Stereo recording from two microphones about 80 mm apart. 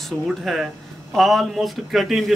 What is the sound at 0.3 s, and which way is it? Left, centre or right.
Speech, centre.